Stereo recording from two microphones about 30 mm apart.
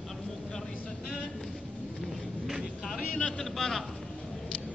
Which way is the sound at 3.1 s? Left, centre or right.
Left.